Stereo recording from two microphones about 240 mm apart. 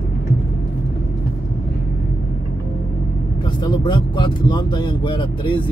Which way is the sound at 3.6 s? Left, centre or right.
Centre.